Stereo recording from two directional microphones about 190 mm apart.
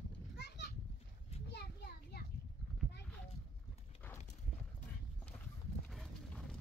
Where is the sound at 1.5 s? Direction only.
60° left (ahead or behind).